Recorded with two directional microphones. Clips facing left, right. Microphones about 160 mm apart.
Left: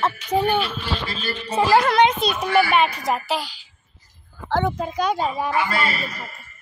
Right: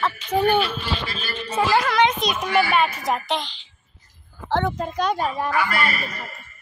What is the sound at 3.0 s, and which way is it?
A woman's voice, 5° left (ahead or behind).